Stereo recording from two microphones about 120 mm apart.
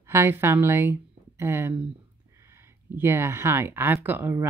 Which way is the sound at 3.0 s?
20° right (ahead or behind).